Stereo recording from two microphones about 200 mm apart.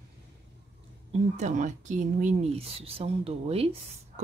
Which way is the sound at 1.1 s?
35° right (ahead or behind).